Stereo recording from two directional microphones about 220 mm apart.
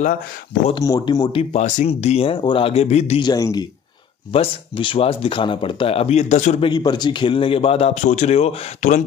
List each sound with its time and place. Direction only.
0.7 s speech: 15° left (ahead or behind)
1.5 s speech: 30° left (ahead or behind)
6.7 s speech: 20° left (ahead or behind)